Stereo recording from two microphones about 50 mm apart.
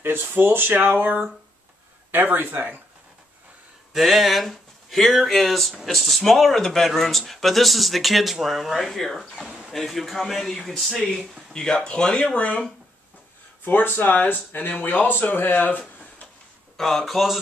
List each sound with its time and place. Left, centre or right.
0.3 s speech: right
3.9 s speech: centre
11.5 s speech: centre
13.7 s speech: left
16.7 s speech: centre